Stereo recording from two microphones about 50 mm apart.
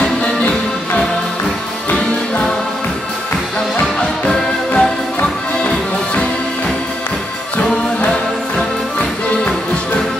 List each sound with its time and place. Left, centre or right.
0.0 s music: left
4.3 s music: centre